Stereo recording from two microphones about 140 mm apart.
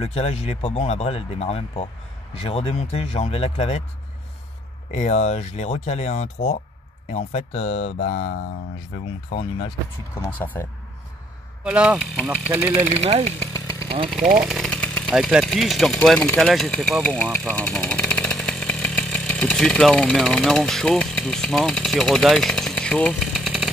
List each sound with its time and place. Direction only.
0.0 s speech: 45° left (ahead or behind)
4.9 s speech: 50° left (ahead or behind)
9.3 s speech: 40° left (ahead or behind)
10.1 s speech: 15° left (ahead or behind)
11.6 s speech: 10° right (ahead or behind)
13.5 s engine: 25° left (ahead or behind)
13.8 s speech: 40° right (ahead or behind)
14.4 s speech: centre (ahead or behind)
14.7 s engine: 10° left (ahead or behind)
15.1 s speech: centre (ahead or behind)